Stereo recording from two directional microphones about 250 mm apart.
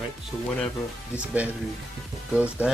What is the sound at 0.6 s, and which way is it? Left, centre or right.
Speech, centre.